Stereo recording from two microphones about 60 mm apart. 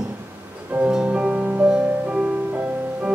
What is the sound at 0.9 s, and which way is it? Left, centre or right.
Music, centre.